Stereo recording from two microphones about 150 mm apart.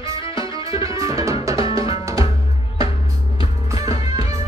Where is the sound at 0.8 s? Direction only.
20° right (ahead or behind).